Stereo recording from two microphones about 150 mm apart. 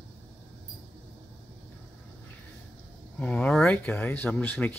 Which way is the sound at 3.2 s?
10° left (ahead or behind).